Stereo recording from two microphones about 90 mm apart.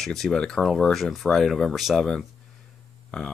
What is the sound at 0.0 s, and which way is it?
Speech, 5° left (ahead or behind).